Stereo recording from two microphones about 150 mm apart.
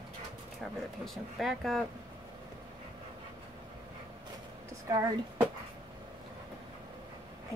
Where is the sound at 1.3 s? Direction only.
Centre (ahead or behind).